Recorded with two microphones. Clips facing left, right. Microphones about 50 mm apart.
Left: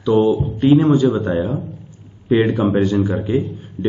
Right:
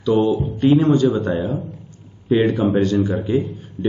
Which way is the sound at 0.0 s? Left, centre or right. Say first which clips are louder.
Left 2 dB; left.